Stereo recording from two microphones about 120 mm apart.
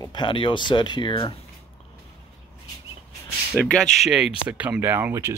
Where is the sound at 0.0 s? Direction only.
40° left (ahead or behind).